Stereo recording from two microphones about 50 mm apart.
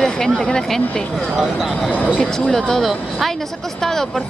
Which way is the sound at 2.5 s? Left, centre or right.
Centre.